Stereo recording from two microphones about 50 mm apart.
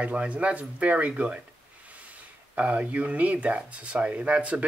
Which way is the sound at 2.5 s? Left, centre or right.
Right.